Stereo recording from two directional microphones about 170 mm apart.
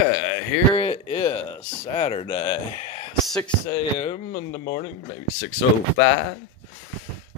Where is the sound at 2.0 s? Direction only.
35° left (ahead or behind).